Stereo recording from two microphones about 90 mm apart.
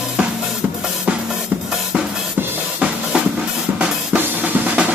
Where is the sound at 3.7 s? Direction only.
20° right (ahead or behind).